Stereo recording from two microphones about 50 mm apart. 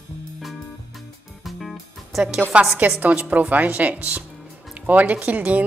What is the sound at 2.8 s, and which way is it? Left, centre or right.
A woman's voice, right.